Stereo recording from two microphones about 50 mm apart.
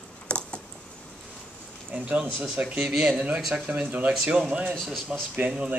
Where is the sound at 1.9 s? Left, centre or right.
Right.